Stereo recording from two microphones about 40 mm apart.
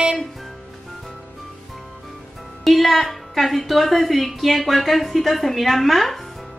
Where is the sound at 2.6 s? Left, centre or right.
Centre.